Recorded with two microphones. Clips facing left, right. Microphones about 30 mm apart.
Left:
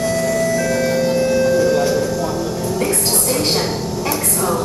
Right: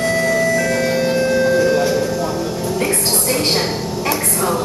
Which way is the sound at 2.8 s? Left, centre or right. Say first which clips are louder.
Right 1 dB; centre.